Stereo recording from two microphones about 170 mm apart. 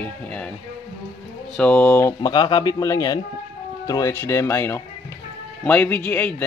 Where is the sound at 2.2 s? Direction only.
25° left (ahead or behind).